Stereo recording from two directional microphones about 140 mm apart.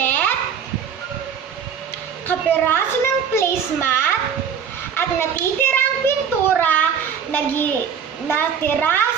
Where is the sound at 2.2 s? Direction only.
15° left (ahead or behind).